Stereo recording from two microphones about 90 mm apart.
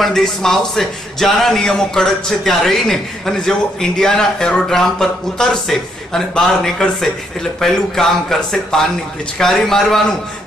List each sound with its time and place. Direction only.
0.0 s a man's voice: 5° left (ahead or behind)